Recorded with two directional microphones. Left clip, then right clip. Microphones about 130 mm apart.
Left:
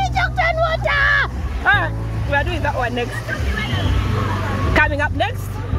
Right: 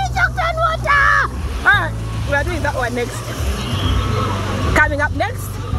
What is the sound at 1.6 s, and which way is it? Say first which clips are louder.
Vehicle: right 2 dB; 15° left (ahead or behind).